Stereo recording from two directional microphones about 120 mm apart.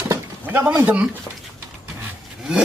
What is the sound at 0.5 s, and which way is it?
Speech, 10° right (ahead or behind).